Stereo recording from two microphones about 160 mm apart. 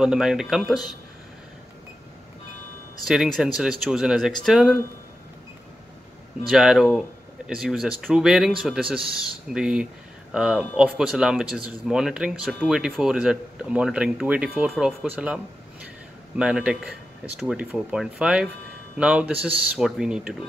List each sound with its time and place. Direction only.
0.0 s speech: 5° right (ahead or behind)
3.1 s speech: centre (ahead or behind)
6.5 s speech: 5° right (ahead or behind)